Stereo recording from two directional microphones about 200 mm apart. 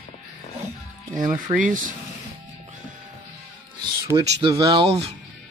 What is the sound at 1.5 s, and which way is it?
Speech, 40° right (ahead or behind).